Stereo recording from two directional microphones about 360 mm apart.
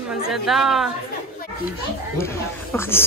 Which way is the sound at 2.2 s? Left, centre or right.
Centre.